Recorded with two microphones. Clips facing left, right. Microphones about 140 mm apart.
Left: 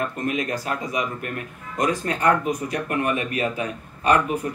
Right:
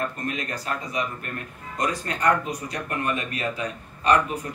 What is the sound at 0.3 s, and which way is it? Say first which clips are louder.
A man's voice: left 4 dB; 15° left (ahead or behind).